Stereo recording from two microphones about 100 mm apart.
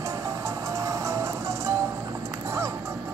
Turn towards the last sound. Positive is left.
turn(degrees=-30)  # may be behind; listen again after turning